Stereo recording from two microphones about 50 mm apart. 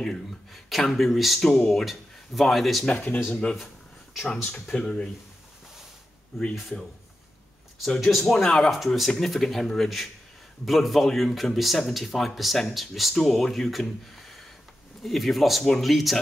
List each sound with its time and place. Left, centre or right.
0.0 s speech: centre
0.7 s speech: centre
1.4 s speech: centre
2.9 s speech: left
3.3 s speech: centre
4.6 s speech: centre
4.8 s speech: centre
6.3 s speech: centre
8.0 s speech: centre